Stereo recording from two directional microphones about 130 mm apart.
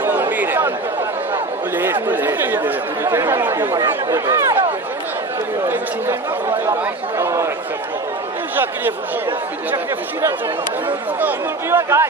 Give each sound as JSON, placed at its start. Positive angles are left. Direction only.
{"t": 0.0, "sound": "chatter", "side_deg": -15}
{"t": 2.0, "sound": "speech", "side_deg": -15}
{"t": 6.8, "sound": "speech", "side_deg": -20}
{"t": 11.1, "sound": "speech", "side_deg": -15}